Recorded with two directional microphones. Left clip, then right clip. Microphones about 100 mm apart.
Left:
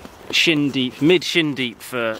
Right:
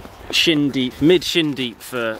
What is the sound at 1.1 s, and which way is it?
Speech, centre (ahead or behind).